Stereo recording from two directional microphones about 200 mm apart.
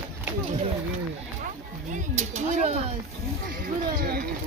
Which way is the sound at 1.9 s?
35° right (ahead or behind).